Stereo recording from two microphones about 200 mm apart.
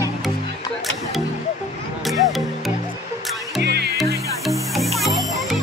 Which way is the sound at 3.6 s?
55° right (ahead or behind).